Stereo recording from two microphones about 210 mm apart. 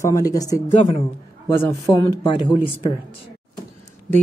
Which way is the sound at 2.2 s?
20° left (ahead or behind).